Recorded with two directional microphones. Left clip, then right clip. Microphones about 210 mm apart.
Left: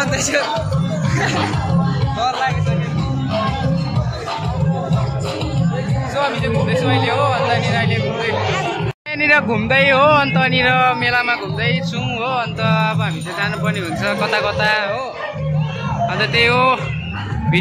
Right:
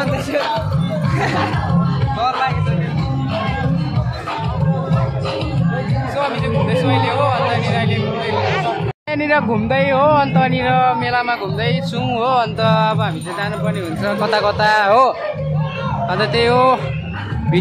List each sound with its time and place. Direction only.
1.2 s music: 5° right (ahead or behind)
6.7 s speech: 5° left (ahead or behind)
9.2 s speech: 10° right (ahead or behind)
16.2 s speech: 20° right (ahead or behind)